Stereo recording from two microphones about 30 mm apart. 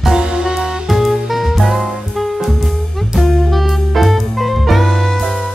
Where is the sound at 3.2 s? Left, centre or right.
Centre.